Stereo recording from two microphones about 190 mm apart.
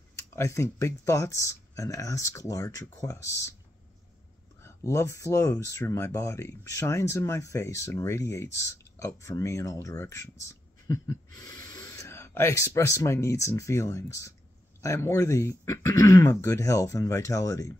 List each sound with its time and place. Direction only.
0.4 s speech: 15° left (ahead or behind)
4.6 s speech: 15° left (ahead or behind)